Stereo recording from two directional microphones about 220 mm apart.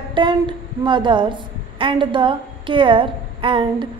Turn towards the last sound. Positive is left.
turn(degrees=-25)  # may be behind; listen again after turning